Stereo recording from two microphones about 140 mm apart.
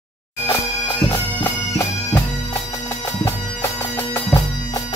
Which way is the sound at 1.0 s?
20° left (ahead or behind).